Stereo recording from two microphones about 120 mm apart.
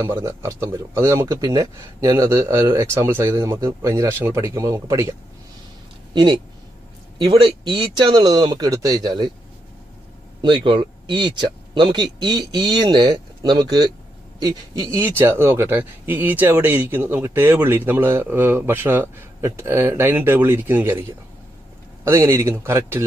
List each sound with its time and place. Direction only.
0.0 s speech: 20° right (ahead or behind)
6.1 s speech: 40° right (ahead or behind)
10.4 s speech: 45° right (ahead or behind); by 23.0 s 20° right (ahead or behind)